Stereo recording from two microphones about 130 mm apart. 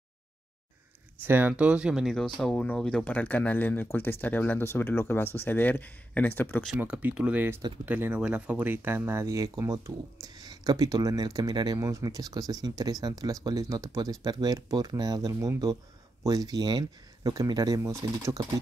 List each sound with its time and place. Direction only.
1.2 s speech: 15° right (ahead or behind); by 6.6 s 15° left (ahead or behind)
6.8 s speech: 15° right (ahead or behind)